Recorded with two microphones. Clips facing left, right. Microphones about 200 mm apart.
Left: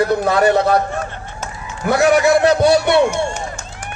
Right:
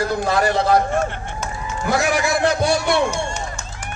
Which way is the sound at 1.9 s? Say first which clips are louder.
Left 7 dB; 60° left (ahead or behind).